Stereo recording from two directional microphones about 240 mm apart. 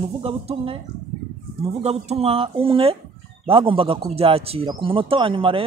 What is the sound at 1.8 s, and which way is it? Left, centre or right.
Speech, right.